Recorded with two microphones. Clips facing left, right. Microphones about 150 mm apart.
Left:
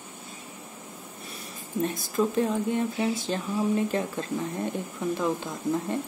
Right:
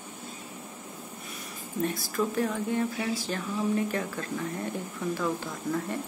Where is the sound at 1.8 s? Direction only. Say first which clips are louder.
Left 2 dB; 20° left (ahead or behind).